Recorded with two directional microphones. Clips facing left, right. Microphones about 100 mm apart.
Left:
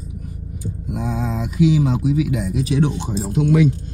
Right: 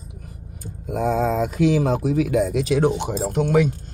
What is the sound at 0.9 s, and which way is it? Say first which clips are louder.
Speech: right 5 dB; 50° right (ahead or behind).